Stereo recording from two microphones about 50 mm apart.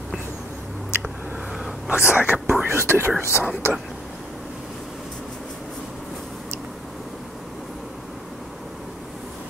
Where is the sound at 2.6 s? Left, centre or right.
Right.